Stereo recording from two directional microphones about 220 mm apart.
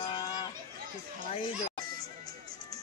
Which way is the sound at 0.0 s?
20° left (ahead or behind).